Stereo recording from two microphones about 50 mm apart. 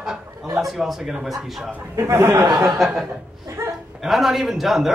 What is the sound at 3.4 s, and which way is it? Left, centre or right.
Dog, right.